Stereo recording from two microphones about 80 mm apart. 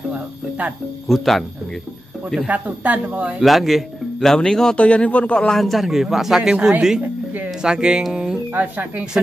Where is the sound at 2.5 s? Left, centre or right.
Centre.